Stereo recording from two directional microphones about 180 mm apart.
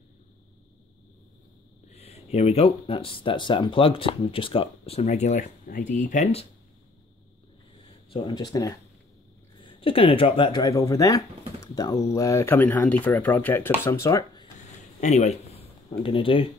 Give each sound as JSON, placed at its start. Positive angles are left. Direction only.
{"t": 1.9, "sound": "speech", "side_deg": 35}
{"t": 8.1, "sound": "speech", "side_deg": 25}
{"t": 15.0, "sound": "speech", "side_deg": 40}